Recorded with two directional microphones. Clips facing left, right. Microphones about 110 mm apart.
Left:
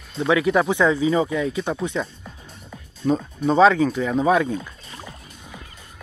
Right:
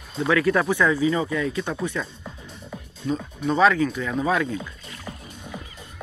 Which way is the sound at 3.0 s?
30° left (ahead or behind).